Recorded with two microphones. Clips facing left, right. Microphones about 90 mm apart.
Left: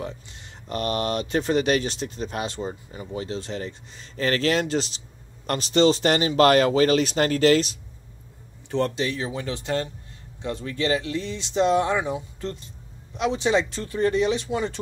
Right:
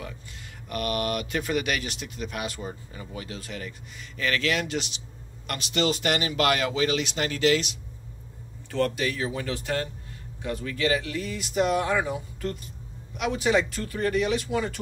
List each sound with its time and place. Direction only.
0.7 s speech: 30° left (ahead or behind)
8.6 s speech: 20° left (ahead or behind)